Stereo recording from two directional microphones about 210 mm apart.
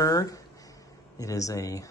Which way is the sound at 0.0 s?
15° left (ahead or behind).